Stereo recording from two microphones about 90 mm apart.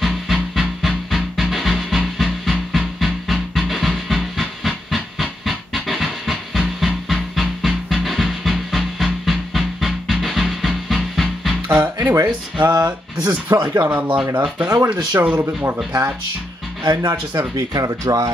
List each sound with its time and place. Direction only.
0.0 s music: centre (ahead or behind)
11.7 s speech: 20° right (ahead or behind)
13.5 s speech: 35° right (ahead or behind)
14.2 s speech: 20° right (ahead or behind)
16.8 s speech: 55° right (ahead or behind)
17.6 s speech: 40° right (ahead or behind)